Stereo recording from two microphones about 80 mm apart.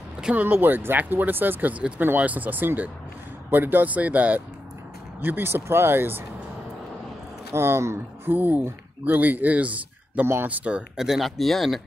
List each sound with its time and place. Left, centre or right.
0.2 s speech: centre
0.5 s speech: right
7.5 s speech: right; by 11.1 s centre
11.1 s speech: centre